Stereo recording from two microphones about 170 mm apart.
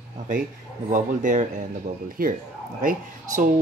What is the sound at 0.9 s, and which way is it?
Speech, 50° right (ahead or behind).